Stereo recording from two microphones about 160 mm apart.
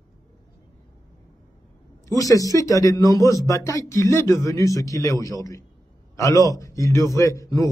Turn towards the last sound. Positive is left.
turn(degrees=20)  # may be behind; listen again after turning